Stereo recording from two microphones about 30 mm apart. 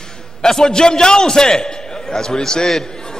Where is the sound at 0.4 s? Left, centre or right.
Left.